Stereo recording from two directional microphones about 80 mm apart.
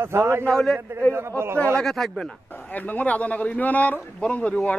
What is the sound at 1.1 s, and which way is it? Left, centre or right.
Speech, right.